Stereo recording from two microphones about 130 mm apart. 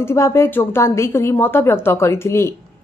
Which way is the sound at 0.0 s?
20° left (ahead or behind).